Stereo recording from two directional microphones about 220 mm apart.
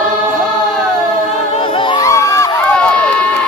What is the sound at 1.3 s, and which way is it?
Crowd, 30° left (ahead or behind).